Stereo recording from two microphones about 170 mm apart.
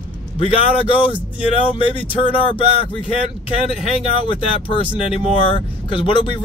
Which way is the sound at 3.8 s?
30° left (ahead or behind).